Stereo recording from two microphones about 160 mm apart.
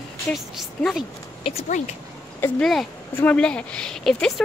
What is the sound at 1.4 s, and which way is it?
Speech, 45° left (ahead or behind).